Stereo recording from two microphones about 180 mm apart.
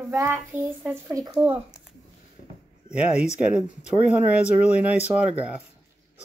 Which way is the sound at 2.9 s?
5° right (ahead or behind).